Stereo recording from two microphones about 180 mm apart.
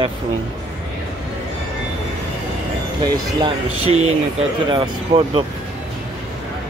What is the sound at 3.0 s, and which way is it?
Speech, 25° right (ahead or behind).